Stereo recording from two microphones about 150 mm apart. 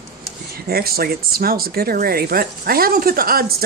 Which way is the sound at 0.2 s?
90° right.